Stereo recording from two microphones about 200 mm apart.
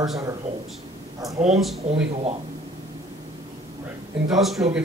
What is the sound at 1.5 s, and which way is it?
Speech, centre (ahead or behind).